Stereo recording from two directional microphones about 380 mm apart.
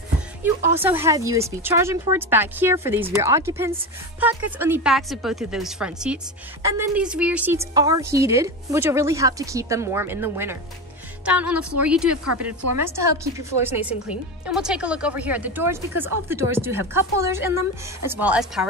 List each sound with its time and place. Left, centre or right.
0.7 s a woman's voice: centre